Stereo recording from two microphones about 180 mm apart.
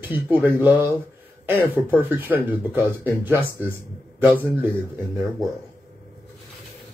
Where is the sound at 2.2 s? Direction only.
10° right (ahead or behind).